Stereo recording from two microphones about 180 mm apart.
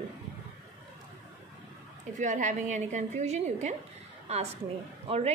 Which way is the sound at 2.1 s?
45° right (ahead or behind).